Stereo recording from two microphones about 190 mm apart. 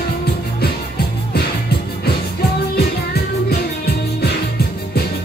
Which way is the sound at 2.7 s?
55° left (ahead or behind).